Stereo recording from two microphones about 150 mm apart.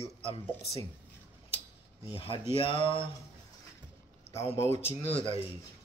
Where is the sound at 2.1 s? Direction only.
35° left (ahead or behind).